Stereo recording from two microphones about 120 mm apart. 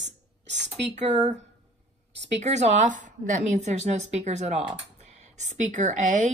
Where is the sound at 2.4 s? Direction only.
75° right (ahead or behind).